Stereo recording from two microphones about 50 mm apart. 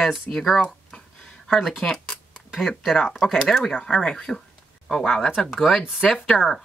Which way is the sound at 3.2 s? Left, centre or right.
Centre.